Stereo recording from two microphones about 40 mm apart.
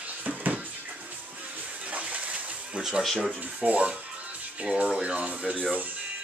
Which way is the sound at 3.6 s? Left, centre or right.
Right.